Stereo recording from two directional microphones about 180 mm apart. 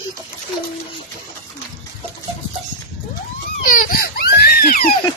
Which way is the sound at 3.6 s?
50° left (ahead or behind).